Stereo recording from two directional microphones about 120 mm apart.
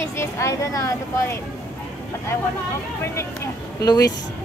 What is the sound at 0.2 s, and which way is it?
Speech, 25° left (ahead or behind).